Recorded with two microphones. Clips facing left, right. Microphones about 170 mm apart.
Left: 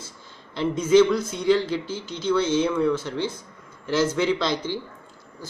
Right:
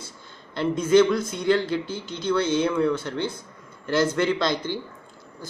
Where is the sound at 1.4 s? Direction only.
60° right (ahead or behind).